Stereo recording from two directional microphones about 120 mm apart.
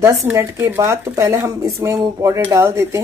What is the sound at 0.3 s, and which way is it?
Speech, 20° right (ahead or behind).